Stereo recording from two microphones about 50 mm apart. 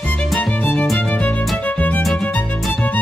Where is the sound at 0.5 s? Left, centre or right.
Left.